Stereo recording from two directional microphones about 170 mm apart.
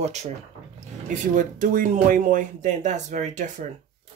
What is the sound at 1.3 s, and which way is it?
Speech, 50° right (ahead or behind).